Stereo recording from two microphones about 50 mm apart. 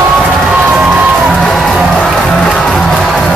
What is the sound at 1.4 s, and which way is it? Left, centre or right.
Music, centre.